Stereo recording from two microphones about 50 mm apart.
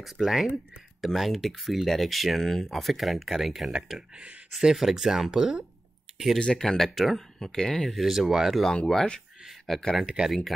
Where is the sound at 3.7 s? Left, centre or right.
Centre.